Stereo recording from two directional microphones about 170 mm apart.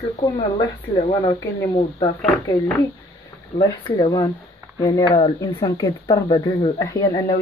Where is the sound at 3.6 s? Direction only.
25° left (ahead or behind).